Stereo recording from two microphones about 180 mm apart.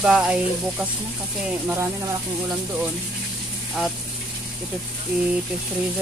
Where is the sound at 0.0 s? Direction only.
5° right (ahead or behind).